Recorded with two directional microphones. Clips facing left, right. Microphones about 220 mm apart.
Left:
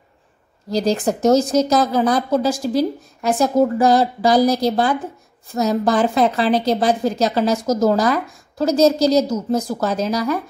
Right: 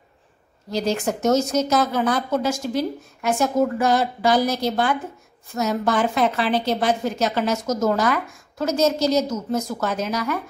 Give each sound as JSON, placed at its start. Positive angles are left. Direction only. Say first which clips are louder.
{"t": 0.7, "sound": "a woman's voice", "louder": "left 4 dB", "side_deg": 35}